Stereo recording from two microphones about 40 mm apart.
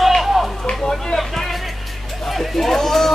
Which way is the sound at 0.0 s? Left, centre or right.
Centre.